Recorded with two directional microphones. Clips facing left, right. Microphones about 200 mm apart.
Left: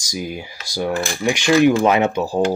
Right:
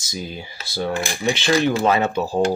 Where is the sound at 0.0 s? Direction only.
10° left (ahead or behind).